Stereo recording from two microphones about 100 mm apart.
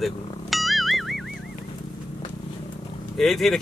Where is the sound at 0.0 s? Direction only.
Centre (ahead or behind).